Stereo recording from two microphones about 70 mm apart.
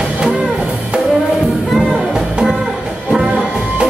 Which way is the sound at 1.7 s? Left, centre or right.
Centre.